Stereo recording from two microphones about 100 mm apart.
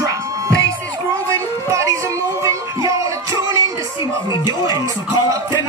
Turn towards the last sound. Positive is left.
turn(degrees=45)  # may be behind; listen again after turning